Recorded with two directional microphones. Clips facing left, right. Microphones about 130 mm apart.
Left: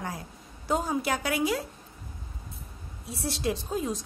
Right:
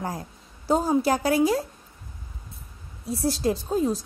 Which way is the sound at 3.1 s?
40° right (ahead or behind).